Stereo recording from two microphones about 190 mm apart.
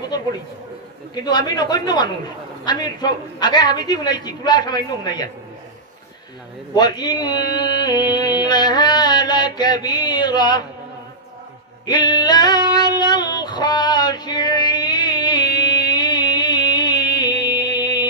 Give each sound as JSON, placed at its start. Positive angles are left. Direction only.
{"t": 0.1, "sound": "a sound", "side_deg": 20}
{"t": 1.1, "sound": "a man's voice", "side_deg": 20}
{"t": 6.7, "sound": "a man's voice", "side_deg": 20}
{"t": 8.1, "sound": "music", "side_deg": 20}
{"t": 11.8, "sound": "female singing", "side_deg": 20}